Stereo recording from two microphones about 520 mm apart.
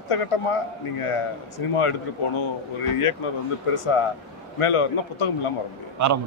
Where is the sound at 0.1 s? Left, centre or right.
Left.